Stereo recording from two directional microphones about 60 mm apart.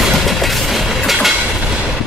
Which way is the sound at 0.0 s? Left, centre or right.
Centre.